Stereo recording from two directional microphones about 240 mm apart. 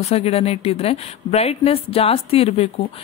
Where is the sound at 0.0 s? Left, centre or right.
Left.